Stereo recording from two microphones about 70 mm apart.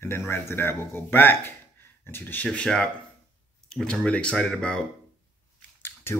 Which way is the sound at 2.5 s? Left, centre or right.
Centre.